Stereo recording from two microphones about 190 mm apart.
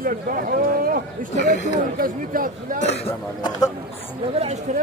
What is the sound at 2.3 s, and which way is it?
Speech, 50° right (ahead or behind).